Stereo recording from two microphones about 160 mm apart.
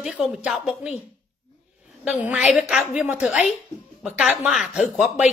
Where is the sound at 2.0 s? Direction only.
5° right (ahead or behind).